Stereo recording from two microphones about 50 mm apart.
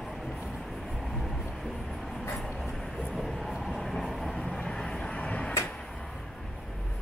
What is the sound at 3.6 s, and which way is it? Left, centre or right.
Vehicle, centre.